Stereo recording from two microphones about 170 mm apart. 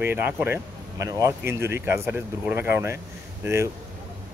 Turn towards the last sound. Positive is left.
turn(degrees=-15)  # may be behind; listen again after turning